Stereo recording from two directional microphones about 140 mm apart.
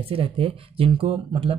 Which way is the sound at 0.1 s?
40° right (ahead or behind).